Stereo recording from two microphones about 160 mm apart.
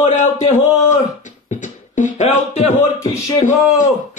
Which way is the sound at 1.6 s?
50° left (ahead or behind).